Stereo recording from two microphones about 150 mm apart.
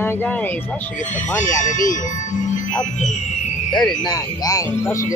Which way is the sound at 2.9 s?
55° left (ahead or behind).